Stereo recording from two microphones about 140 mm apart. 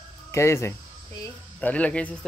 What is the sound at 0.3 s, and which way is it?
Speech, 20° left (ahead or behind).